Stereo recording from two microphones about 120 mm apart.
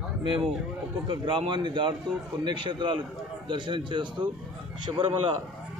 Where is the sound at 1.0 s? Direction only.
45° right (ahead or behind).